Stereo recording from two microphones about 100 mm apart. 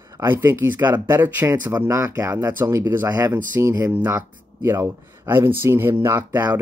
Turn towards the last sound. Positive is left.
turn(degrees=-20)  # may be behind; listen again after turning